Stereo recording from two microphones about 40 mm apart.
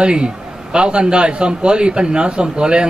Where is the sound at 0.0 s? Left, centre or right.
Right.